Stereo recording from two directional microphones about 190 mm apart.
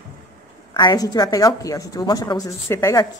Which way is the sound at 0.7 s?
20° left (ahead or behind).